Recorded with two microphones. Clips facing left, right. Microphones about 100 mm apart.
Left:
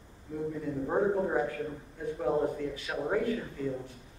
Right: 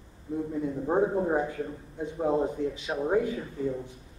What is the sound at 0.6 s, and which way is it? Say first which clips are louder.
Speech: right 4 dB; 20° right (ahead or behind).